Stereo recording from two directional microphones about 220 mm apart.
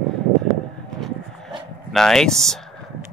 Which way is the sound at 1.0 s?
Centre (ahead or behind).